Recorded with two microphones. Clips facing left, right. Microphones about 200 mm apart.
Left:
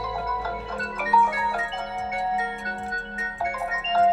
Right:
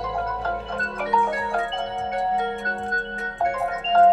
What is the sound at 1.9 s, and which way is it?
Music, centre (ahead or behind).